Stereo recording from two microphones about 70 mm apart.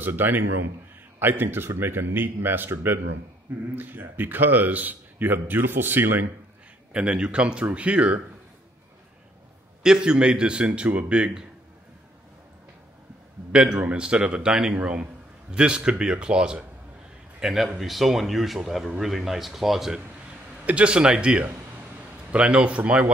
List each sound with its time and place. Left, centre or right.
0.0 s a man's voice: right
6.9 s a man's voice: centre
9.8 s a man's voice: centre
13.5 s a man's voice: centre
20.2 s a man's voice: centre